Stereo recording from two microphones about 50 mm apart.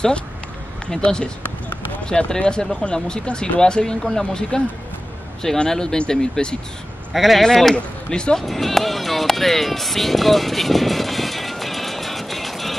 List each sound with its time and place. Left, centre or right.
0.8 s speech: centre
7.2 s speech: centre
7.4 s speech: centre
8.5 s music: centre